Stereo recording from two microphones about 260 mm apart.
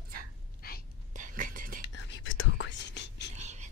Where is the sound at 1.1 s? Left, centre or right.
Right.